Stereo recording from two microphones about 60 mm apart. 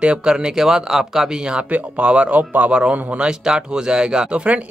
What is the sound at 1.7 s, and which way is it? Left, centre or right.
Speech, right.